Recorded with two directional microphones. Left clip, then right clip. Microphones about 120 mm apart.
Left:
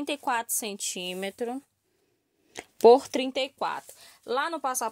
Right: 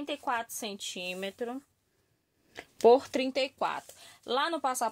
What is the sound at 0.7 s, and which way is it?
Speech, 90° left.